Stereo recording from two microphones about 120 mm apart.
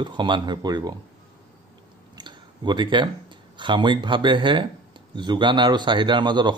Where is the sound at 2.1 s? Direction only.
40° right (ahead or behind).